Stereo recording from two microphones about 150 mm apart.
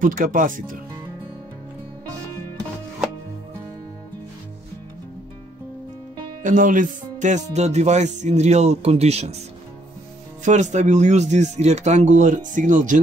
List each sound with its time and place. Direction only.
0.0 s speech: 65° right (ahead or behind)
6.4 s speech: 60° right (ahead or behind)
10.4 s speech: 55° right (ahead or behind)